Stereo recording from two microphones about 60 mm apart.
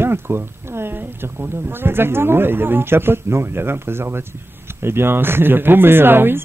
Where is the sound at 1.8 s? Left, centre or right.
Right.